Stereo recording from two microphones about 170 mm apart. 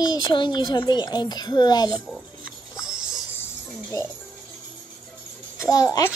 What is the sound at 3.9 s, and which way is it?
Speech, 20° left (ahead or behind).